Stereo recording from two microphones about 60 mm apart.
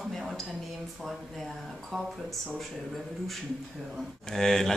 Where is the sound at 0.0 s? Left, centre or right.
Centre.